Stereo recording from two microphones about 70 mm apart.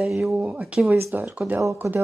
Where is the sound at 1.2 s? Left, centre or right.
Right.